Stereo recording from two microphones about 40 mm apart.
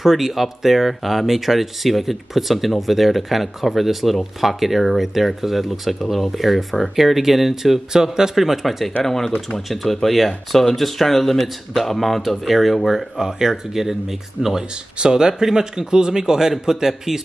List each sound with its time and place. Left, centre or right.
0.0 s speech: centre
9.0 s speech: centre
13.2 s a man's voice: centre
15.0 s a man's voice: centre